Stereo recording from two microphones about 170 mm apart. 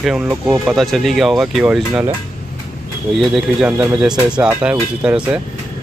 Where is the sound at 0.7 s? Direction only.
Centre (ahead or behind).